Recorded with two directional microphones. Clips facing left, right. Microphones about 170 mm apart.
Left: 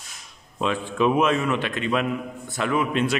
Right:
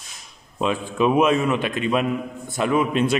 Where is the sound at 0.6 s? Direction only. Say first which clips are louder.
Right 2 dB; 15° right (ahead or behind).